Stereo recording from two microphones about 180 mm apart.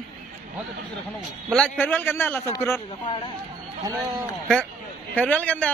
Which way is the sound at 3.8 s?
20° right (ahead or behind).